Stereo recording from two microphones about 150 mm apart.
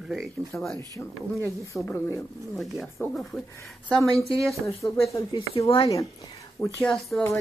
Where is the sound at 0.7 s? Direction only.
20° left (ahead or behind).